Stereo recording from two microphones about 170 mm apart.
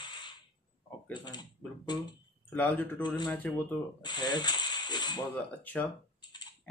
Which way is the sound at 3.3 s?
10° left (ahead or behind).